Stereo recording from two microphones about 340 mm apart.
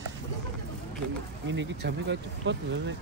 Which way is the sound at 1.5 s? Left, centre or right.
Right.